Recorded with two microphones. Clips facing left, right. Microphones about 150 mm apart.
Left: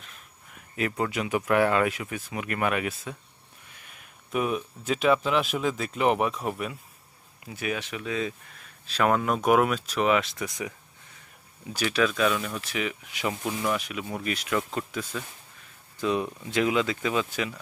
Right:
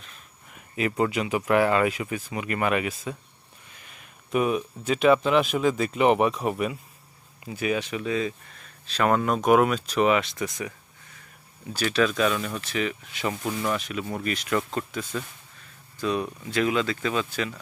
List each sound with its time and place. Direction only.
0.7 s speech: 5° right (ahead or behind)
11.7 s speech: 10° left (ahead or behind)
13.4 s speech: centre (ahead or behind)
16.0 s speech: 20° left (ahead or behind)